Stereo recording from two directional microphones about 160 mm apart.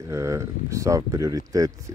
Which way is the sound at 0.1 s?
20° right (ahead or behind).